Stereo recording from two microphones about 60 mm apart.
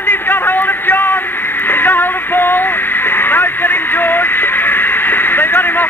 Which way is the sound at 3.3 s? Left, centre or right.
Left.